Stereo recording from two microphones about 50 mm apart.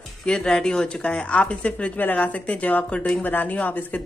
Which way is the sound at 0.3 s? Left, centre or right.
Centre.